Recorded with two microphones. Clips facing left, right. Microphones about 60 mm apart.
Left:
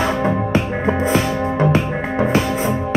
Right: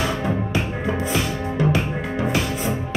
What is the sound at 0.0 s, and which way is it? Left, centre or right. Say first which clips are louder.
Music: left 5 dB; left.